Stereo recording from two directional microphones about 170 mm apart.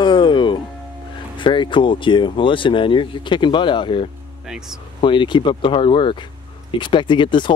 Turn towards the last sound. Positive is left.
turn(degrees=30)  # may be behind; listen again after turning